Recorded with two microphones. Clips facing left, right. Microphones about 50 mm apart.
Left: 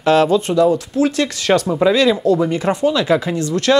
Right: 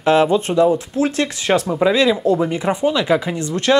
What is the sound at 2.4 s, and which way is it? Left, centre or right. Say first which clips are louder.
Speech: left 1 dB; centre.